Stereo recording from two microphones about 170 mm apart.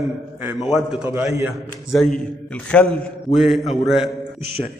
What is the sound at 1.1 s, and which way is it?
Speech, 15° right (ahead or behind).